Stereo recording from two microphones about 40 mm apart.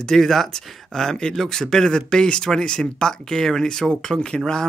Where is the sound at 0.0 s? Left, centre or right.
Centre.